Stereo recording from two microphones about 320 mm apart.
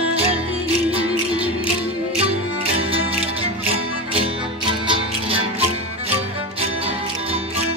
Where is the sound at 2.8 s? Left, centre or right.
Centre.